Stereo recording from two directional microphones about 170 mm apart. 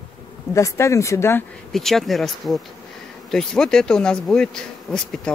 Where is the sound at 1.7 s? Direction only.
Centre (ahead or behind).